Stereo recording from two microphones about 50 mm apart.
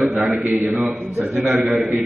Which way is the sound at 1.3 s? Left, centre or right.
Centre.